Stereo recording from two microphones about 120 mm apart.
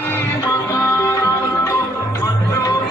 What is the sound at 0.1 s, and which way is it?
Music, 25° left (ahead or behind).